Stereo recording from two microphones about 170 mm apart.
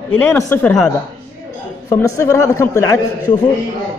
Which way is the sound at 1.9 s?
15° left (ahead or behind).